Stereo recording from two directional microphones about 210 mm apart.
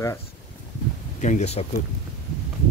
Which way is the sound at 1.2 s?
35° left (ahead or behind).